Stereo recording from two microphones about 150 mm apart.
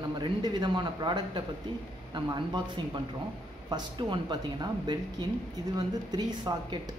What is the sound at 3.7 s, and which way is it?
Speech, 30° right (ahead or behind).